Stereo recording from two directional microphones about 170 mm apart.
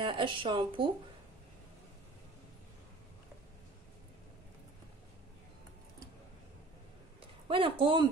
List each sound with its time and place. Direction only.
0.0 s speech: 30° right (ahead or behind)
7.4 s speech: 30° right (ahead or behind)